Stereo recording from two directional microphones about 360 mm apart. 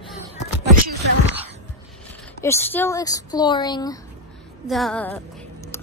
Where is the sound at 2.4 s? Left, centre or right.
Centre.